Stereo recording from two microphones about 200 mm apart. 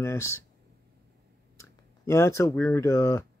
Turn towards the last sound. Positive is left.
turn(degrees=15)  # may be behind; listen again after turning